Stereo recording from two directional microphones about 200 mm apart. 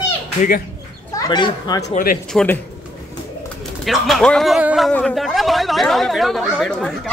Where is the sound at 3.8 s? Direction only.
Centre (ahead or behind).